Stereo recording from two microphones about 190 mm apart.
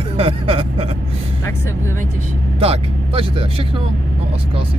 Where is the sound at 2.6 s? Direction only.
30° right (ahead or behind).